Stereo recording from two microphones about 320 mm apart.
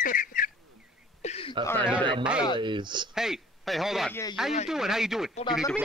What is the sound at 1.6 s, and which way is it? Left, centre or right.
Speech, centre.